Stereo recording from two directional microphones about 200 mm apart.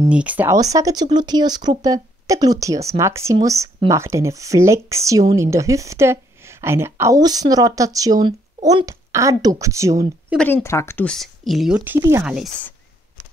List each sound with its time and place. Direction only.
0.0 s speech: 5° right (ahead or behind)
10.3 s speech: 10° left (ahead or behind); by 12.3 s 10° right (ahead or behind)